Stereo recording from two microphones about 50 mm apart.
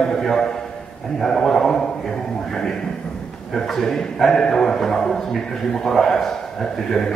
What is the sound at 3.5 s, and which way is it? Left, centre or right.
Speech, centre.